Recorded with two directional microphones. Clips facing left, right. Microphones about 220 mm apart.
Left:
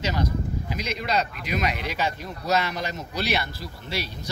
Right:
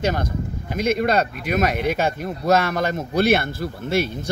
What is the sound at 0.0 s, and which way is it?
Speech, 50° right (ahead or behind).